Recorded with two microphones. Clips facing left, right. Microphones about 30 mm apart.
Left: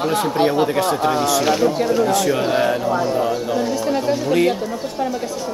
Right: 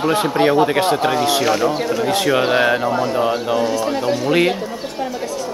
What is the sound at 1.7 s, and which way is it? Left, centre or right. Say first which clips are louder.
Speech: left 1 dB; right.